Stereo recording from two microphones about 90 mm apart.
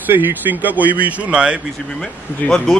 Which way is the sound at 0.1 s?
20° right (ahead or behind).